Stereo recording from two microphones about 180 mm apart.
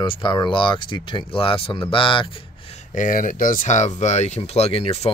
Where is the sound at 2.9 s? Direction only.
45° left (ahead or behind).